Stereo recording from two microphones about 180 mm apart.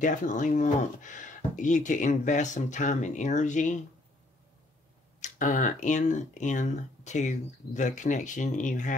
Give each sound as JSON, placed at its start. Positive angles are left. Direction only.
{"t": 0.0, "sound": "speech", "side_deg": 45}
{"t": 5.2, "sound": "speech", "side_deg": 45}